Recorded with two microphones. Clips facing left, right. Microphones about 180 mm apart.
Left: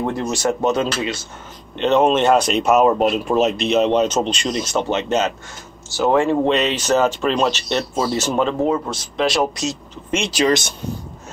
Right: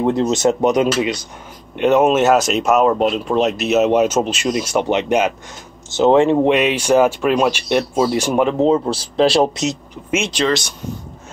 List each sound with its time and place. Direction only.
0.0 s speech: 20° right (ahead or behind)
8.6 s speech: 30° right (ahead or behind)